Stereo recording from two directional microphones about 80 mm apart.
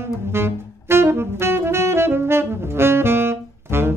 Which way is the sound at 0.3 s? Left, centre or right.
Right.